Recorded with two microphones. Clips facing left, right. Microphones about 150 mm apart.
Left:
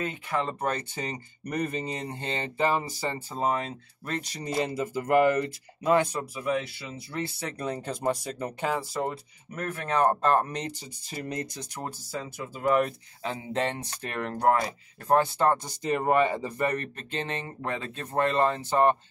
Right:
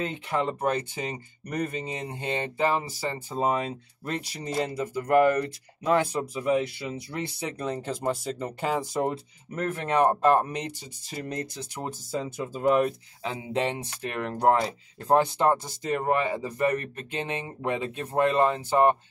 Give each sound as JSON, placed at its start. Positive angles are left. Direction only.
{"t": 0.0, "sound": "speech", "side_deg": -20}
{"t": 0.6, "sound": "speech", "side_deg": -10}
{"t": 3.3, "sound": "speech", "side_deg": -15}
{"t": 4.5, "sound": "speech", "side_deg": 5}
{"t": 6.4, "sound": "speech", "side_deg": -20}
{"t": 7.5, "sound": "speech", "side_deg": 0}
{"t": 8.7, "sound": "speech", "side_deg": -20}
{"t": 11.8, "sound": "speech", "side_deg": -20}
{"t": 15.5, "sound": "speech", "side_deg": 0}